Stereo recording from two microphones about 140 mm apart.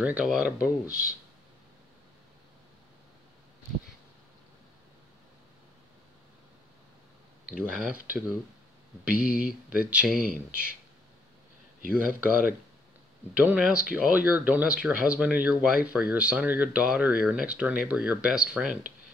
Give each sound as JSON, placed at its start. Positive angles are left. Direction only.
{"t": 0.0, "sound": "speech", "side_deg": -5}
{"t": 7.4, "sound": "speech", "side_deg": -10}
{"t": 9.1, "sound": "speech", "side_deg": 90}
{"t": 9.4, "sound": "speech", "side_deg": -5}
{"t": 12.1, "sound": "speech", "side_deg": 90}
{"t": 13.3, "sound": "speech", "side_deg": -10}